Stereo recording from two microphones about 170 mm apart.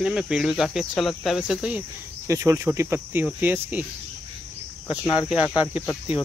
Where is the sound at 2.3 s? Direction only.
20° right (ahead or behind).